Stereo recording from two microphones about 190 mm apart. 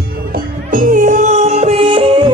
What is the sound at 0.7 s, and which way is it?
Music, 45° right (ahead or behind).